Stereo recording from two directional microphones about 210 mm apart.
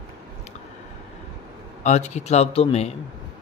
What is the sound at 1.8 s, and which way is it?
Speech, 35° left (ahead or behind).